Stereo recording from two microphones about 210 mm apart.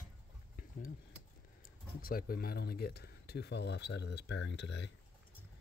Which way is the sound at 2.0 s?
45° left (ahead or behind).